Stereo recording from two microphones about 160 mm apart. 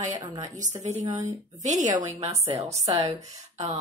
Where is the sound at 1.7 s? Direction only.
20° right (ahead or behind).